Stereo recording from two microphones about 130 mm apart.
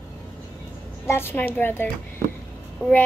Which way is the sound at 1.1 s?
15° left (ahead or behind).